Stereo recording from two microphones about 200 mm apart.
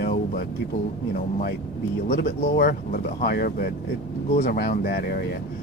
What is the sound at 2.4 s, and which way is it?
Speech, 45° left (ahead or behind).